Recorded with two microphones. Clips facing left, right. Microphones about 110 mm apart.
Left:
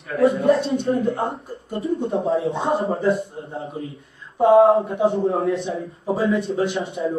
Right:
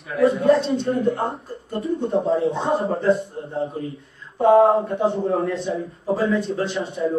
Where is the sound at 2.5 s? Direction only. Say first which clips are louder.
Even; centre (ahead or behind).